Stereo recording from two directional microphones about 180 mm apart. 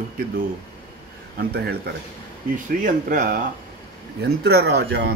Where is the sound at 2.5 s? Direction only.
45° right (ahead or behind).